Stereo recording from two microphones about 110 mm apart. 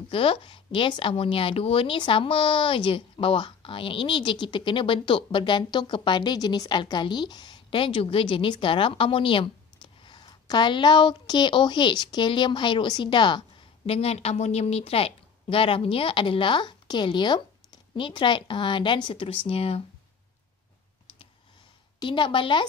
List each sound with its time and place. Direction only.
0.1 s a woman's voice: 55° left (ahead or behind)
13.8 s a woman's voice: 65° left (ahead or behind)
22.0 s a woman's voice: 45° left (ahead or behind)